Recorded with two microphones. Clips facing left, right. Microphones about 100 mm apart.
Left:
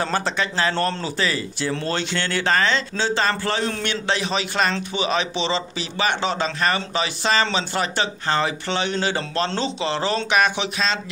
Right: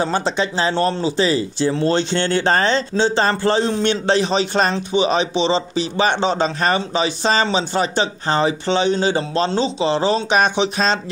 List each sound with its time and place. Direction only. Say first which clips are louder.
0.0 s speech: right 4 dB; 20° right (ahead or behind)